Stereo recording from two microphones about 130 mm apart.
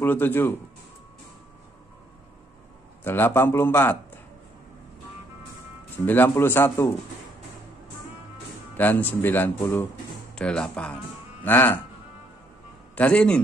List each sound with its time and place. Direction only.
0.0 s speech: 15° left (ahead or behind)
3.0 s speech: 15° left (ahead or behind)
6.0 s speech: 15° left (ahead or behind)
8.7 s speech: 15° left (ahead or behind)
12.9 s a man's voice: 10° left (ahead or behind)